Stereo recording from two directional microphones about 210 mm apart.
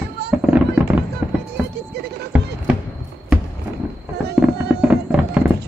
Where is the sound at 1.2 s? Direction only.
10° right (ahead or behind).